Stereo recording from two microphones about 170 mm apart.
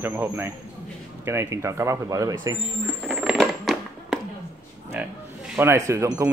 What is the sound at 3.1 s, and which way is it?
Coin, centre (ahead or behind).